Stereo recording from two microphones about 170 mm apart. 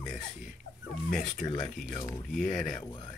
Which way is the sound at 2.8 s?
30° left (ahead or behind).